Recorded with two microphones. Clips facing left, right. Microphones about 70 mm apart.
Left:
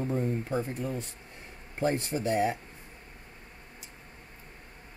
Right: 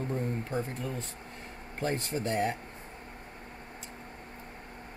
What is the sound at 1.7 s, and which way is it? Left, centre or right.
Speech, centre.